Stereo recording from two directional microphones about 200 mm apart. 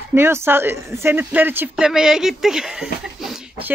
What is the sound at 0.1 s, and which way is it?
Speech, 10° right (ahead or behind).